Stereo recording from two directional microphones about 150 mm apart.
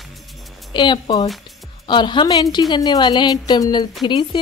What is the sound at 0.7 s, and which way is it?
A woman's voice, 30° left (ahead or behind).